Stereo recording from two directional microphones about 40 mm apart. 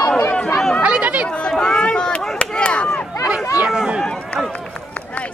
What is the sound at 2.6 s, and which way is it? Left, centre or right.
Chop, left.